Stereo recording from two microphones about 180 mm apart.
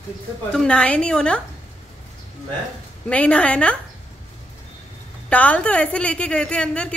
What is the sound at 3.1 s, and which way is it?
Speech, 5° left (ahead or behind).